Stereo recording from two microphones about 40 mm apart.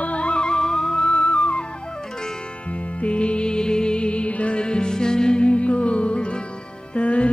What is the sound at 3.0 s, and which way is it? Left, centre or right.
Music, left.